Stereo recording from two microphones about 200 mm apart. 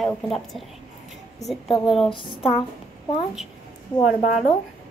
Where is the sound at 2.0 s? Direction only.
25° left (ahead or behind).